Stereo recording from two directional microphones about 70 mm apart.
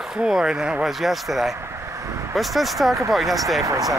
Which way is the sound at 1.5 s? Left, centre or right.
Right.